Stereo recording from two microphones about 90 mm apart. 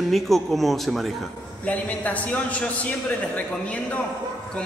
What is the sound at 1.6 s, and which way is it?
A man's voice, 15° left (ahead or behind).